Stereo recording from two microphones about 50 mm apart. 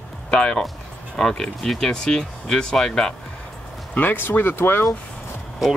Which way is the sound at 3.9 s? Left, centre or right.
Left.